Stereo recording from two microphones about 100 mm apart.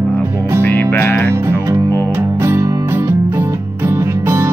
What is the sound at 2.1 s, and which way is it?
Music, 25° right (ahead or behind).